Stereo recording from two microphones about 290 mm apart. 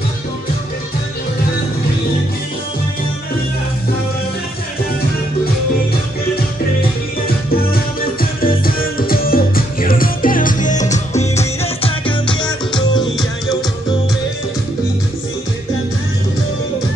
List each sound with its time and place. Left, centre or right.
6.3 s music: left; by 13.3 s centre